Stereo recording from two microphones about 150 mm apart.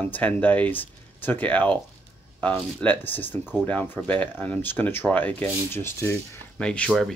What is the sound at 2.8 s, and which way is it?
Speech, 10° left (ahead or behind).